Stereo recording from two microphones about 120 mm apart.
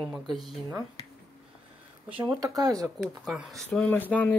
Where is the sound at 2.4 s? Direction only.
30° right (ahead or behind).